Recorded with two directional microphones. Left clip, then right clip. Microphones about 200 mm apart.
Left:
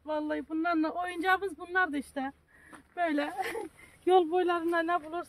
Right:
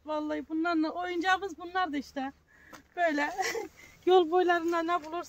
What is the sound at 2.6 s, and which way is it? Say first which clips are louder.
Speech: right 2 dB; 25° right (ahead or behind).